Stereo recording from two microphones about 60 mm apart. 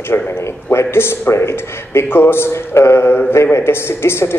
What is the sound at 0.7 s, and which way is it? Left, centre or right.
A man's voice, left.